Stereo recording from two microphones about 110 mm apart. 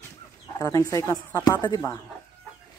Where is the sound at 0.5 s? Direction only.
35° left (ahead or behind).